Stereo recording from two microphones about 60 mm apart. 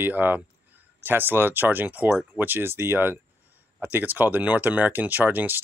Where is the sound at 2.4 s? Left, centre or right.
Right.